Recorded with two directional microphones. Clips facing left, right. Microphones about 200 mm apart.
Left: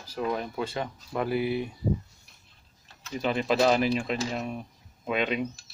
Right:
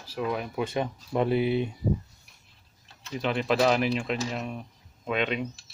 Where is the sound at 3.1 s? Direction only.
Centre (ahead or behind).